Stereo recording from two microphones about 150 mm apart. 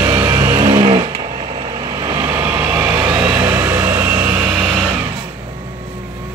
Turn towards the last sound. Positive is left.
turn(degrees=0)  # may be behind; listen again after turning